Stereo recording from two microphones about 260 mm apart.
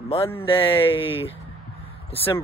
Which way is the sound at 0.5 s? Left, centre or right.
Centre.